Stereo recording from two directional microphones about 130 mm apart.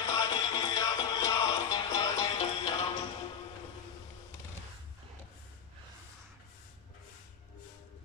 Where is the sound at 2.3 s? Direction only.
50° left (ahead or behind).